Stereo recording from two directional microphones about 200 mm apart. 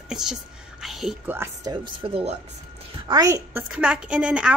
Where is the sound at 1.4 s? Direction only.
20° right (ahead or behind).